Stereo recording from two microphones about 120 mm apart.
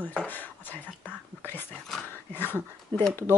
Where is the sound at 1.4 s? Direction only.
15° left (ahead or behind).